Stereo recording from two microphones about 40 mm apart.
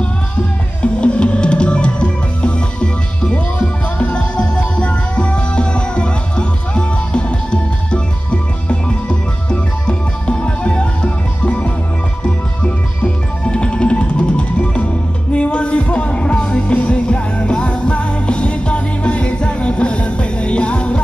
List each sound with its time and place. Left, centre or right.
1.0 s music: left